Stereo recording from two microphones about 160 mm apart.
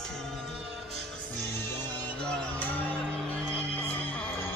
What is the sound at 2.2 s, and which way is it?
Music, 5° left (ahead or behind).